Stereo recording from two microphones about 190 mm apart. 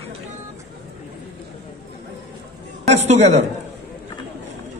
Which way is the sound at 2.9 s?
35° right (ahead or behind).